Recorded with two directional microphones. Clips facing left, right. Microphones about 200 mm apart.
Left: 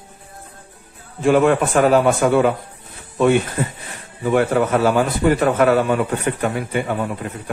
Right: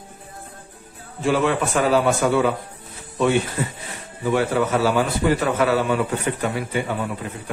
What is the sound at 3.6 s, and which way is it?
A man's voice, 55° left (ahead or behind).